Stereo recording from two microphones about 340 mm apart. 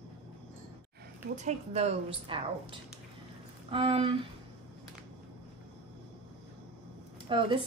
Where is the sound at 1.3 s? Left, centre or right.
Centre.